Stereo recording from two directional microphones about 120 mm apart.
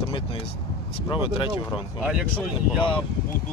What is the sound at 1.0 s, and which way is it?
Speech, 45° left (ahead or behind).